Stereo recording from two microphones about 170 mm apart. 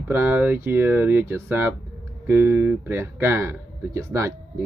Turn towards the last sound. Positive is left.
turn(degrees=-15)  # may be behind; listen again after turning